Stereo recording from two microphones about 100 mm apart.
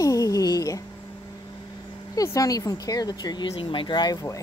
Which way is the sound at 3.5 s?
55° left (ahead or behind).